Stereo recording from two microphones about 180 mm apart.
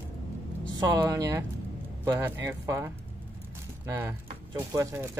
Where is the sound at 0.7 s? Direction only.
20° right (ahead or behind).